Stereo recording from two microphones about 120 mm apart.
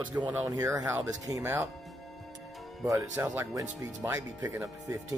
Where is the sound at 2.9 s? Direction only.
20° right (ahead or behind).